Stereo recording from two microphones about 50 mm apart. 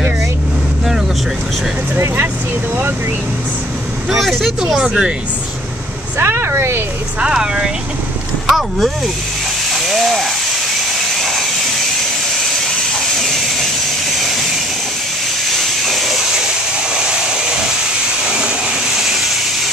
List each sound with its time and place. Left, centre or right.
4.1 s speech: centre
4.7 s speech: centre
6.1 s speech: right
7.2 s speech: centre
8.5 s speech: centre
9.7 s a sound: centre
12.9 s steam: centre
14.1 s vehicle: centre
15.5 s a sound: centre
16.9 s vehicle: centre
18.2 s a sound: centre
18.9 s hiss: centre